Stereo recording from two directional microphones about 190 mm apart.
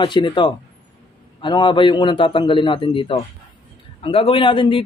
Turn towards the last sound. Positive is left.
turn(degrees=25)  # may be behind; listen again after turning